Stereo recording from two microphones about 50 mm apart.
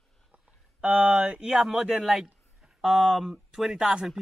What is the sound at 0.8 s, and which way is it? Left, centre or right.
Speech, right.